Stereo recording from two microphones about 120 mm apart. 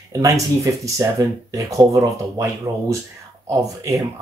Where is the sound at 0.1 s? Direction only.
25° right (ahead or behind).